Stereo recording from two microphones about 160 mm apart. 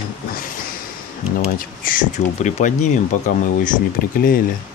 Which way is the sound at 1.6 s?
60° left (ahead or behind).